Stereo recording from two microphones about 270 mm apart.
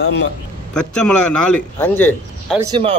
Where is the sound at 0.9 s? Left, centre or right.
Left.